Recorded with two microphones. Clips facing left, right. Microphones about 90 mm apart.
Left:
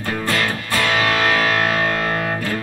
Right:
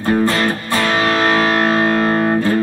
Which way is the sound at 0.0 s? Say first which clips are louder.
Right 6 dB; 25° right (ahead or behind).